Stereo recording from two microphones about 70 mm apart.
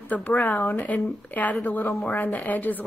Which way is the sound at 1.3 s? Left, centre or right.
Left.